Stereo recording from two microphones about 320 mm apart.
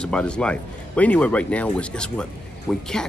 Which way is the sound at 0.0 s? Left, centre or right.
Centre.